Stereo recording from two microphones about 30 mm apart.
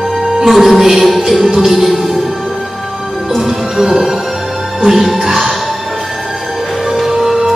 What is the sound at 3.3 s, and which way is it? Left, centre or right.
Music, centre.